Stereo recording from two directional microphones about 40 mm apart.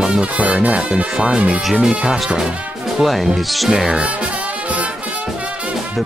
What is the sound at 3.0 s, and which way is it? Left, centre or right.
Speech, centre.